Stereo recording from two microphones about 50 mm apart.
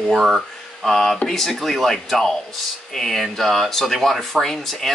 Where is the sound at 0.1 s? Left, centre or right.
Centre.